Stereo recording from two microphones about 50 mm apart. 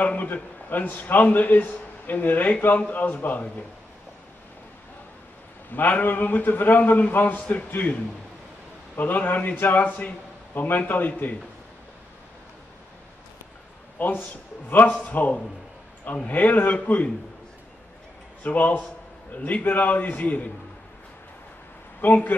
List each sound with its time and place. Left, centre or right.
0.0 s a man's voice: left
5.7 s a man's voice: left
13.9 s a man's voice: left
16.3 s a man's voice: left
18.4 s a man's voice: left
22.0 s a man's voice: left